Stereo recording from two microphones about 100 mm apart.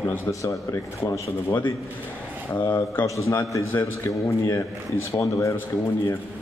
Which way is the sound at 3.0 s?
30° left (ahead or behind).